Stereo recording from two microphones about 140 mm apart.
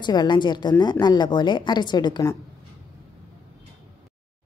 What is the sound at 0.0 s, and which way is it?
A woman's voice, 30° left (ahead or behind).